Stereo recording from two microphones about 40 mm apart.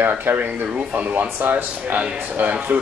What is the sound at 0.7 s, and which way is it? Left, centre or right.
Speech, right.